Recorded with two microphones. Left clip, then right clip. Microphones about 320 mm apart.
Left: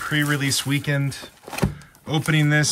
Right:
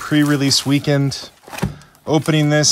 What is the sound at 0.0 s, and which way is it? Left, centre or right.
Speech, centre.